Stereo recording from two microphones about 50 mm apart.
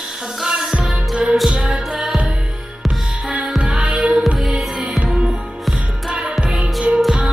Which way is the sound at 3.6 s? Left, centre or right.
Centre.